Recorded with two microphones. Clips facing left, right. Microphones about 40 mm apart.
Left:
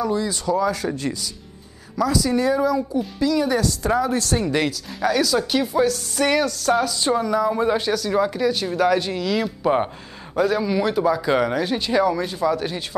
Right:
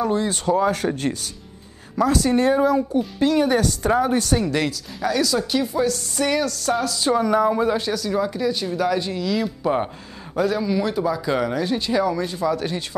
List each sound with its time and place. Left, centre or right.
0.0 s speech: right
4.4 s speech: left
7.2 s speech: right
7.6 s speech: left
8.1 s speech: left
8.4 s speech: left
9.6 s speech: centre
10.5 s speech: left
11.6 s speech: left
12.2 s speech: left